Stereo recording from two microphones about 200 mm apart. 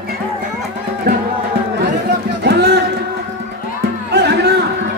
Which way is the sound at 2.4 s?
55° right (ahead or behind).